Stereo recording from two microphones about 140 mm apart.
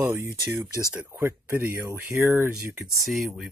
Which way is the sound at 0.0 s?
15° right (ahead or behind).